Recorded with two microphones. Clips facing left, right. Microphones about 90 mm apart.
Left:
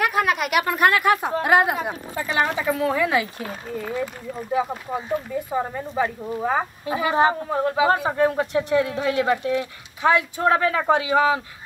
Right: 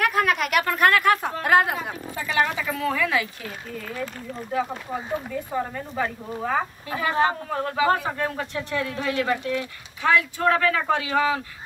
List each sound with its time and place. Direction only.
0.0 s a woman's voice: 10° left (ahead or behind)
2.2 s a woman's voice: 30° left (ahead or behind)
5.3 s a woman's voice: 15° left (ahead or behind)